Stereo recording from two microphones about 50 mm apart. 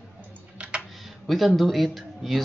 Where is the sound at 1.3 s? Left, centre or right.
Centre.